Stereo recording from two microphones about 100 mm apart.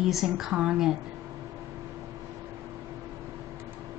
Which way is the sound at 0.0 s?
5° right (ahead or behind).